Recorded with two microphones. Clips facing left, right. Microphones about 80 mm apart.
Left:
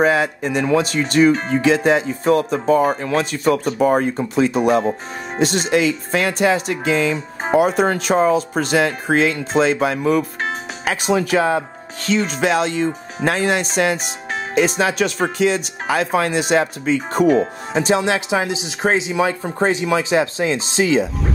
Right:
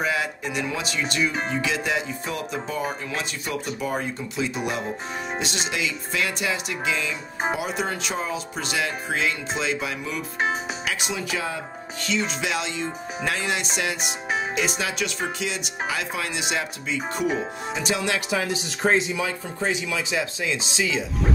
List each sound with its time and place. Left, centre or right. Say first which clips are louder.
0.0 s speech: left 9 dB; left
17.8 s speech: left 7 dB; left
18.9 s speech: left 4 dB; left
19.2 s speech: left 8 dB; left